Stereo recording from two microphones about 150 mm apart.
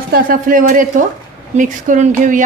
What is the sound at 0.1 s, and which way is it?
A woman's voice, 65° right (ahead or behind).